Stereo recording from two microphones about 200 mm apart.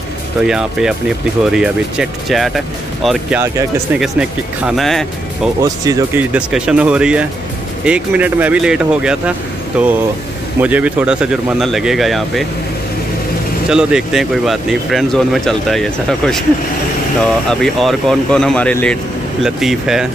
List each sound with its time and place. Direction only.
0.4 s speech: 5° right (ahead or behind)
5.6 s speech: 15° right (ahead or behind)
6.3 s speech: 5° right (ahead or behind)
13.7 s speech: 5° right (ahead or behind)
17.5 s speech: centre (ahead or behind)